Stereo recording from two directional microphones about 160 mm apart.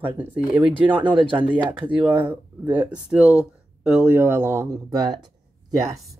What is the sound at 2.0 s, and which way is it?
A woman's voice, 10° right (ahead or behind).